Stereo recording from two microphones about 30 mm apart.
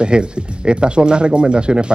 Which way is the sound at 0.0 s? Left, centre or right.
Right.